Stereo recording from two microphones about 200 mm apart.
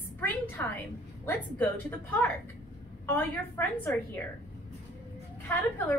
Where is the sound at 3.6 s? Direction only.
15° left (ahead or behind).